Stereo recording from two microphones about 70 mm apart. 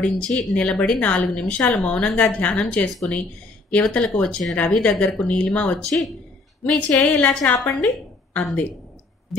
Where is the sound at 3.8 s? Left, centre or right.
Centre.